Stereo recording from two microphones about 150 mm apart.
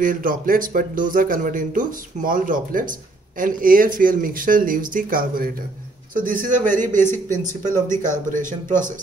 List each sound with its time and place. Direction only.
0.0 s a man's voice: 65° right (ahead or behind)